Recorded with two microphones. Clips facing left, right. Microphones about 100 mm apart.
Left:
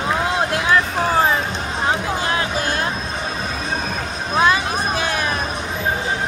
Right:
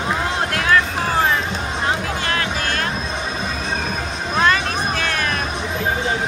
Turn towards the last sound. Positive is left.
turn(degrees=15)  # may be behind; listen again after turning